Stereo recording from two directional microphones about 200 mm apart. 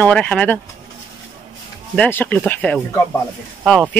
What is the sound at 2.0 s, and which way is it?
Speech, 10° left (ahead or behind).